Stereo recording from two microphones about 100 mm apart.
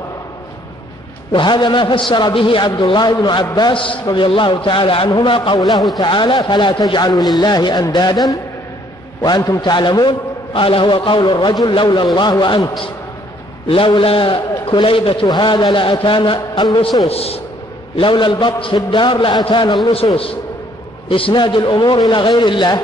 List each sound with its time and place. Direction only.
1.3 s a man's voice: 50° left (ahead or behind)
2.8 s a man's voice: 45° left (ahead or behind)
13.7 s a man's voice: 60° left (ahead or behind); by 17.4 s 80° left
17.9 s a man's voice: 55° left (ahead or behind)
19.9 s a man's voice: 75° left (ahead or behind)
21.1 s a man's voice: 55° left (ahead or behind)